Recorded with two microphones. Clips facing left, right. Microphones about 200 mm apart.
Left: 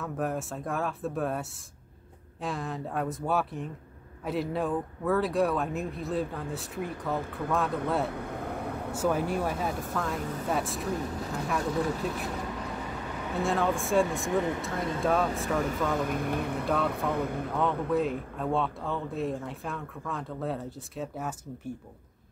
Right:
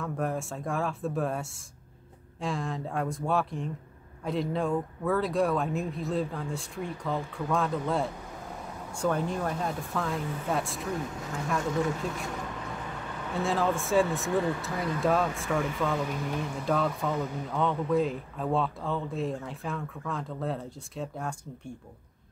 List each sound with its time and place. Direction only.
0.0 s speech: centre (ahead or behind)
8.1 s vehicle: 60° left (ahead or behind)
8.9 s speech: 5° left (ahead or behind)
13.3 s speech: centre (ahead or behind)
14.3 s speech: 20° left (ahead or behind)
15.0 s speech: centre (ahead or behind)
16.1 s speech: 55° left (ahead or behind)
16.6 s speech: centre (ahead or behind)
17.2 s speech: 60° left (ahead or behind)
17.5 s speech: centre (ahead or behind)